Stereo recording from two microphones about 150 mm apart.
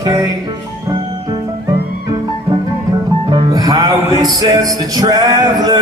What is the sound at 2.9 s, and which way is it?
Music, 30° right (ahead or behind).